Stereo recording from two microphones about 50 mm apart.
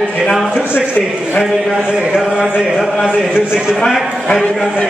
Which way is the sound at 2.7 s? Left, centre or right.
Centre.